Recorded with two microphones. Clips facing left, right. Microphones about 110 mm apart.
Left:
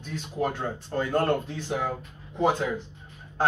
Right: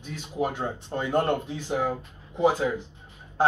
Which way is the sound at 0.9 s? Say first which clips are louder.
Even; 20° right (ahead or behind).